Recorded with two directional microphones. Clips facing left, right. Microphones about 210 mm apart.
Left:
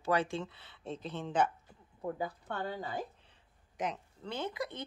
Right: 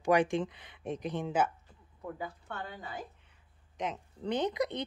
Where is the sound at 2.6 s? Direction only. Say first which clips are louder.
Left 6 dB; 35° left (ahead or behind).